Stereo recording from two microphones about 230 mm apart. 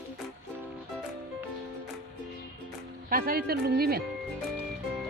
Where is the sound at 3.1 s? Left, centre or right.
Right.